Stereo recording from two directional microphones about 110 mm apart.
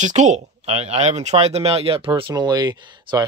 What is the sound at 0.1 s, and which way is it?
Speech, 90° right.